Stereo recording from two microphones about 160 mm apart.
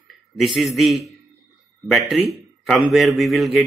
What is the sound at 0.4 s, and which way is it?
A man's voice, centre (ahead or behind).